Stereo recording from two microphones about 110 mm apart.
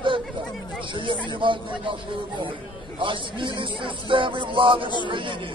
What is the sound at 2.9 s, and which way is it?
A man's voice, 50° right (ahead or behind).